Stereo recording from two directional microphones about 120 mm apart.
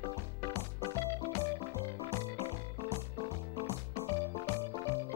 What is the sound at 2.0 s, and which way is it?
Music, 15° left (ahead or behind).